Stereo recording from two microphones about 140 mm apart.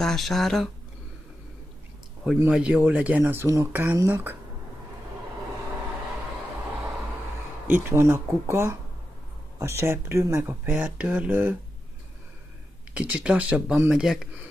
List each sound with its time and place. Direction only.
0.0 s speech: centre (ahead or behind)
2.2 s speech: 5° right (ahead or behind)
7.6 s speech: 15° right (ahead or behind)
12.9 s speech: 10° right (ahead or behind)